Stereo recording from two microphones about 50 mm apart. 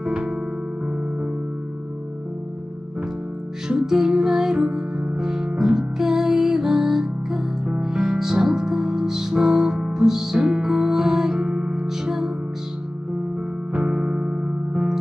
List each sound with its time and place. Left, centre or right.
0.0 s music: centre
3.6 s music: centre
13.7 s music: centre